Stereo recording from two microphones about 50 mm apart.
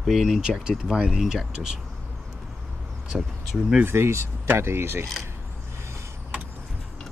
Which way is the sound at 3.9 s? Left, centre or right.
Right.